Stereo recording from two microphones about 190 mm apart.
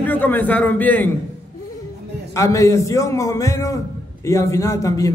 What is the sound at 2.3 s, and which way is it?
A man's voice, 15° left (ahead or behind).